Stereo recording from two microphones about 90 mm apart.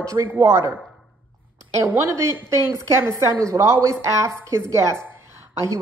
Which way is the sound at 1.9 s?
30° right (ahead or behind).